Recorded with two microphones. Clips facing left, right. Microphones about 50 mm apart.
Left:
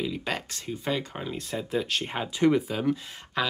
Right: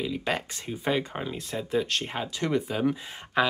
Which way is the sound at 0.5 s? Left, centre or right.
Centre.